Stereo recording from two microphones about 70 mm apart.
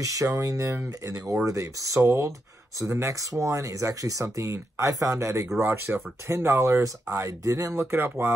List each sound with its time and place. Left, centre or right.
0.0 s speech: right
5.9 s speech: centre
6.2 s speech: right
6.8 s speech: right
7.7 s speech: right